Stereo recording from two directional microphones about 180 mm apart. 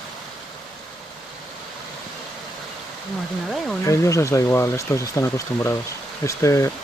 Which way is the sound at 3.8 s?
15° left (ahead or behind).